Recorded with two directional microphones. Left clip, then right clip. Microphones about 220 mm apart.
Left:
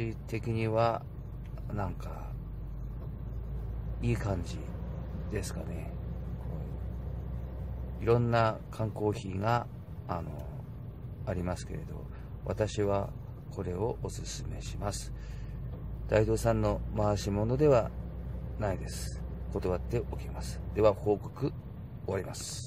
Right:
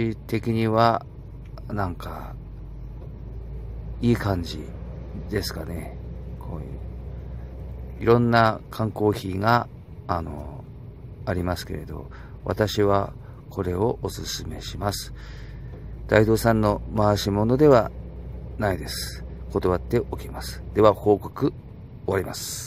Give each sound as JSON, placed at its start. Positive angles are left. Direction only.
{"t": 0.0, "sound": "speech", "side_deg": -20}
{"t": 4.0, "sound": "speech", "side_deg": -20}
{"t": 8.0, "sound": "speech", "side_deg": -15}
{"t": 11.2, "sound": "speech", "side_deg": -20}
{"t": 16.1, "sound": "speech", "side_deg": -20}
{"t": 19.5, "sound": "speech", "side_deg": -20}